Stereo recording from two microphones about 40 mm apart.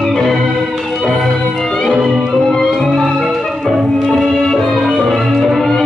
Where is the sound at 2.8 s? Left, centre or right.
Centre.